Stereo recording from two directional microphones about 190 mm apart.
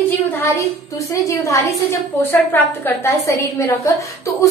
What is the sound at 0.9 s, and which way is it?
A woman's voice, 15° left (ahead or behind).